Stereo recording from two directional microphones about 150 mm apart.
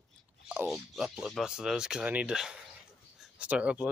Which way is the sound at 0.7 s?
Centre (ahead or behind).